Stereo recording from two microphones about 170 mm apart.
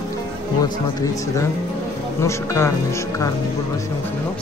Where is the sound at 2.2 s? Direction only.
15° left (ahead or behind).